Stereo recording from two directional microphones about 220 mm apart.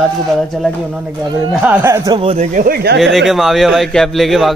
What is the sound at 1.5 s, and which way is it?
Speech, 5° right (ahead or behind).